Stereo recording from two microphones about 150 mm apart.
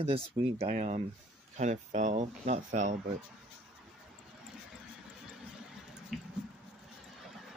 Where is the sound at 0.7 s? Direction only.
50° right (ahead or behind).